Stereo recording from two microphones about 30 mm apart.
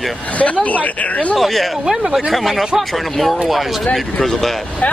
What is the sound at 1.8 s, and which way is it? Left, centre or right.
Speech, centre.